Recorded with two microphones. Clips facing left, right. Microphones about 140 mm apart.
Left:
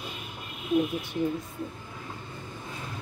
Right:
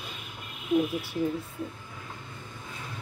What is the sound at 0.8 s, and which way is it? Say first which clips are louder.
Speech: left 2 dB; 5° right (ahead or behind).